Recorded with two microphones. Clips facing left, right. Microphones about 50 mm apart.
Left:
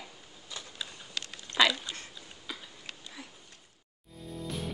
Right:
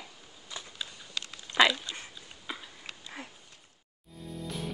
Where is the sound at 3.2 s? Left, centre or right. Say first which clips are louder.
Right 3 dB; right.